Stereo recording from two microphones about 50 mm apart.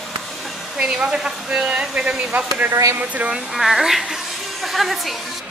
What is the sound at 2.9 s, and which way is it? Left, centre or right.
Speech, right.